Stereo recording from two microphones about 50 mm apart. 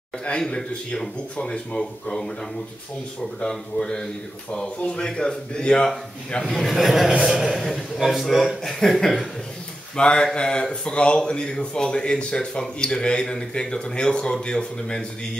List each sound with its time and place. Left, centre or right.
0.6 s speech: centre
3.4 s speech: centre
6.6 s a man's voice: centre
9.9 s speech: centre